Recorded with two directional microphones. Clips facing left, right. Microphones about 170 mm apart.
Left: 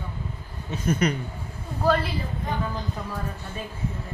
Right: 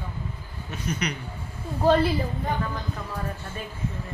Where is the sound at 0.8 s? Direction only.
50° left (ahead or behind).